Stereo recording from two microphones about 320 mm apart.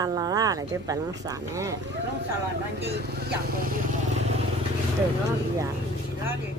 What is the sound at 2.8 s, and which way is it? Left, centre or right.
Speech, right.